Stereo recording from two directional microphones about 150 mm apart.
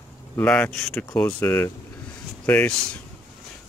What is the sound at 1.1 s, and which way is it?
Speech, 15° left (ahead or behind).